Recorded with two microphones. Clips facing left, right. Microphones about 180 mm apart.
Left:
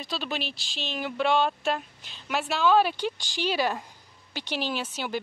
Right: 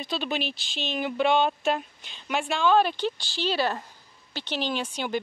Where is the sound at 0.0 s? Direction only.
Centre (ahead or behind).